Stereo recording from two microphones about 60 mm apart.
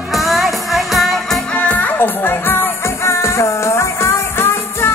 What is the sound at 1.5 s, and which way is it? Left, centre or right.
Music, left.